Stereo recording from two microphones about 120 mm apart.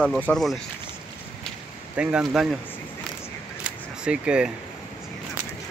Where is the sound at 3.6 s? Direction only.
10° right (ahead or behind).